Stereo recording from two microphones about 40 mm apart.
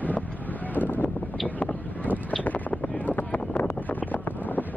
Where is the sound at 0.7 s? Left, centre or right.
Left.